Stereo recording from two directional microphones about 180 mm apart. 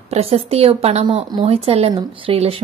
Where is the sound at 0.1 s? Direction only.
35° right (ahead or behind).